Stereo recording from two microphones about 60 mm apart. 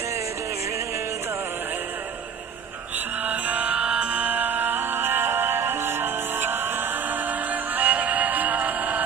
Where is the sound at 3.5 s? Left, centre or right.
Right.